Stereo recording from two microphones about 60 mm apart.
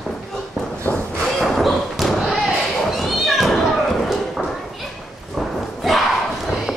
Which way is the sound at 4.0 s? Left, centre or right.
Centre.